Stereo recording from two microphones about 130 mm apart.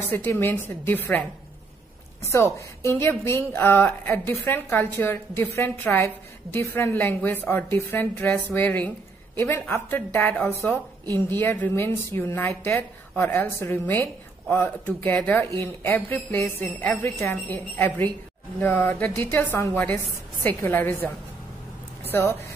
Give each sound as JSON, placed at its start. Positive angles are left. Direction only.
{"t": 0.1, "sound": "a woman's voice", "side_deg": 15}
{"t": 2.2, "sound": "a woman's voice", "side_deg": 20}